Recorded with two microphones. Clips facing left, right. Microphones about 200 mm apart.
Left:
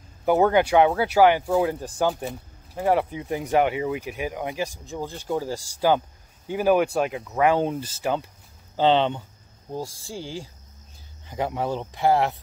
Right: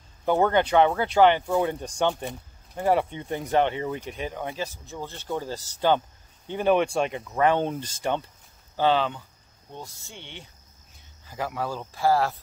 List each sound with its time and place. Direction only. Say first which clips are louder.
0.2 s speech: left 3 dB; 10° left (ahead or behind)
8.7 s speech: left 3 dB; 25° left (ahead or behind)